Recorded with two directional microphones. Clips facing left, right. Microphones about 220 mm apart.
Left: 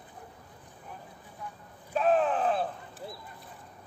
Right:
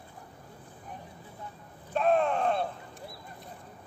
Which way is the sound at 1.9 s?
Centre (ahead or behind).